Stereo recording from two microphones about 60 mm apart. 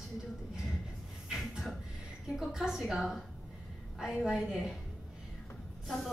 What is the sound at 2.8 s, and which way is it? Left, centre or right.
Music, centre.